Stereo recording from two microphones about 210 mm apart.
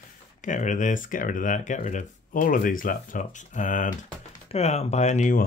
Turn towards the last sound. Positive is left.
turn(degrees=35)  # may be behind; listen again after turning